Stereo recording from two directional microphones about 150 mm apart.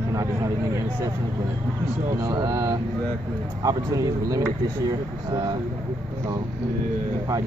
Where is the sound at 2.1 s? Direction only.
25° right (ahead or behind).